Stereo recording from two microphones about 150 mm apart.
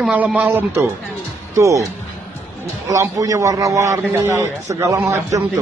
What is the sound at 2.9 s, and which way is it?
A man's voice, 20° right (ahead or behind).